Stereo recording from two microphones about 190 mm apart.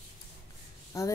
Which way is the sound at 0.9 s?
15° left (ahead or behind).